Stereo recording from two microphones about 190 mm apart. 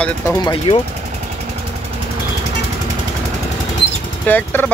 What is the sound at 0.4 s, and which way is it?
Speech, 25° left (ahead or behind).